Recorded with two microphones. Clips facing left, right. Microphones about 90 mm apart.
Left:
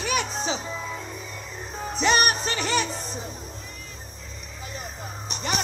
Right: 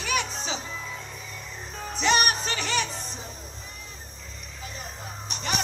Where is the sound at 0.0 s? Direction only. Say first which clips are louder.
Left 3 dB; 15° left (ahead or behind).